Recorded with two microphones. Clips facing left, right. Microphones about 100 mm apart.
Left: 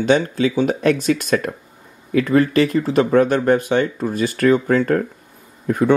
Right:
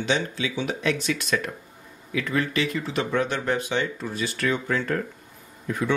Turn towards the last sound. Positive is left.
turn(degrees=45)  # may be behind; listen again after turning